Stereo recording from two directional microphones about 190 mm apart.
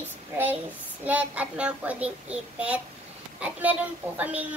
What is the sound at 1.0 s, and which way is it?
A child's voice, 5° right (ahead or behind).